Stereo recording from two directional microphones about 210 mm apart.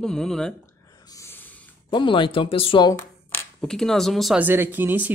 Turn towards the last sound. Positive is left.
turn(degrees=-10)  # may be behind; listen again after turning